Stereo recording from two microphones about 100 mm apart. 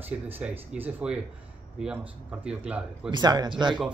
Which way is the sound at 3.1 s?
45° right (ahead or behind).